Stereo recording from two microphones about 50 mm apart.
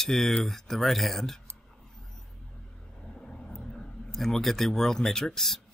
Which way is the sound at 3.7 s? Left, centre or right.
Centre.